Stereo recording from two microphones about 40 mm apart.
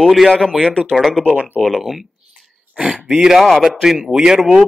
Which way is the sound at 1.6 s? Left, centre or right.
Centre.